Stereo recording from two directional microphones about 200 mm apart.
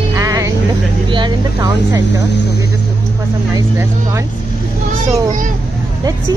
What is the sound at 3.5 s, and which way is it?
Speech, 15° right (ahead or behind).